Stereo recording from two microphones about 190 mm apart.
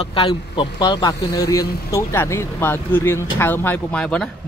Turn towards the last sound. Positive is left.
turn(degrees=5)  # may be behind; listen again after turning